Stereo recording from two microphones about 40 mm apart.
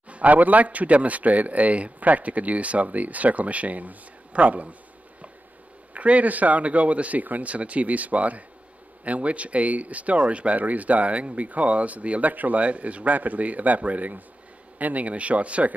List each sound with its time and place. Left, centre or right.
0.1 s speech: right
5.9 s speech: right